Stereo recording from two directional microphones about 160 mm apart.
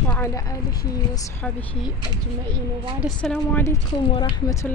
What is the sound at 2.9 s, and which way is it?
Speech, centre (ahead or behind).